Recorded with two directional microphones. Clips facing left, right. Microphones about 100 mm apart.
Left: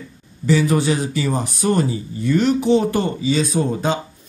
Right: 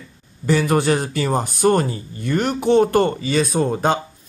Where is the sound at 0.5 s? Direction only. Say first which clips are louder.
Even; 50° right (ahead or behind).